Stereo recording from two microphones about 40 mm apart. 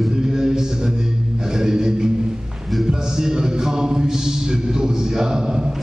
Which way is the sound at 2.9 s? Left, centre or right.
Centre.